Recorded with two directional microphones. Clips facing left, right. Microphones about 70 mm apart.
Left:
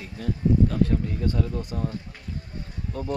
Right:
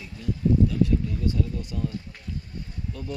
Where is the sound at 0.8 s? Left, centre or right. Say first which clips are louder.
Even; left.